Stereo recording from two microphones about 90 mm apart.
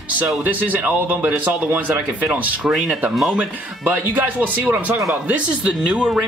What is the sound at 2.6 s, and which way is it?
Speech, 5° right (ahead or behind).